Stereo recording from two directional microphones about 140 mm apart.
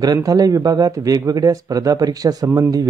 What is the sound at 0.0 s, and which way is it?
Speech, 25° right (ahead or behind).